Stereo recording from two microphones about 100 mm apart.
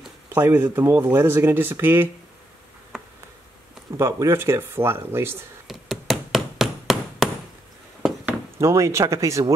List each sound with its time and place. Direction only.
0.3 s speech: 20° right (ahead or behind)
4.0 s speech: 25° right (ahead or behind)
5.7 s hammer: centre (ahead or behind)
8.5 s speech: 30° right (ahead or behind)